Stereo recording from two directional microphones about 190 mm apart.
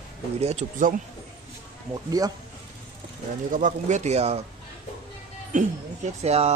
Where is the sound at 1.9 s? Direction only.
20° right (ahead or behind).